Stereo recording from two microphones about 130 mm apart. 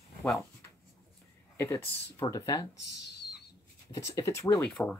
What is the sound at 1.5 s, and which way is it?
Speech, 15° left (ahead or behind).